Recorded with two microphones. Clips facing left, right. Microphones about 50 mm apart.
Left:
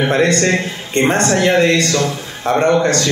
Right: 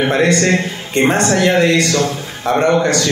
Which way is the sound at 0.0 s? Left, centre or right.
Centre.